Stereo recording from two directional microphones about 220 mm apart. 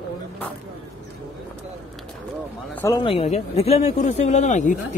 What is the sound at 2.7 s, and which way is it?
Speech, 15° left (ahead or behind).